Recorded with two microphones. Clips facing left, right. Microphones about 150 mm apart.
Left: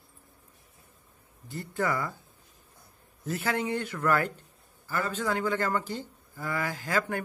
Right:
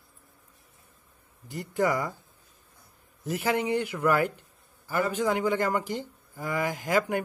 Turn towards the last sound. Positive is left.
turn(degrees=-15)  # may be behind; listen again after turning